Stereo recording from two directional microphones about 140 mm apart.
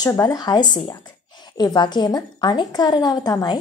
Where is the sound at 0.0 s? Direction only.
25° left (ahead or behind).